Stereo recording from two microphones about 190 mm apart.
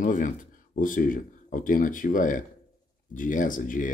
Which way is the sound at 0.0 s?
45° left (ahead or behind).